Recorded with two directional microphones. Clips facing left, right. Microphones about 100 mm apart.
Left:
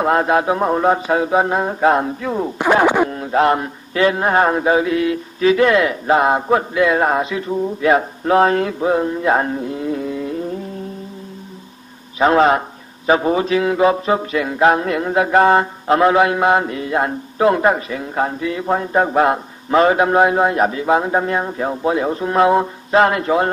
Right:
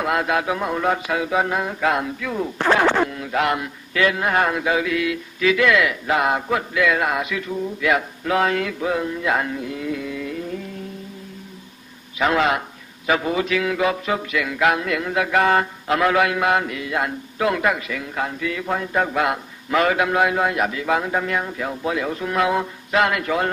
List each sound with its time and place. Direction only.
0.0 s a man's voice: 35° left (ahead or behind)
2.6 s speech: 15° left (ahead or behind)
3.1 s a man's voice: 35° left (ahead or behind)
12.2 s a man's voice: 35° left (ahead or behind)